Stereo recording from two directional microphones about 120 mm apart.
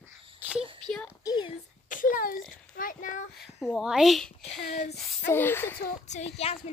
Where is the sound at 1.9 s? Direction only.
90° left.